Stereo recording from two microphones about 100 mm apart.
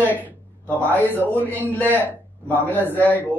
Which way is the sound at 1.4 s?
15° left (ahead or behind).